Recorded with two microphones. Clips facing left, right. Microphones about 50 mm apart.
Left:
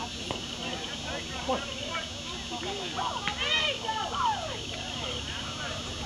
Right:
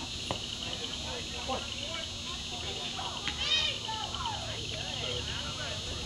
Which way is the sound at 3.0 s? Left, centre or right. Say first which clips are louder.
Left 8 dB; left.